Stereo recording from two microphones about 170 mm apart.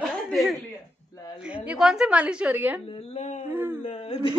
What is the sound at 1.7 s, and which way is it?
A woman's voice, 5° right (ahead or behind).